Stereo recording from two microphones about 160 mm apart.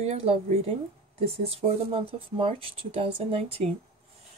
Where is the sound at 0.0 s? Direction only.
40° right (ahead or behind).